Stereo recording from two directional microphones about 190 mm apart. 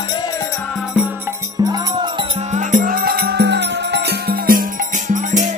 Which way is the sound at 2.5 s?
45° right (ahead or behind).